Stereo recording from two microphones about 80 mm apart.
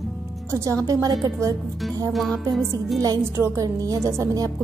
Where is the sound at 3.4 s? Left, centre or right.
Right.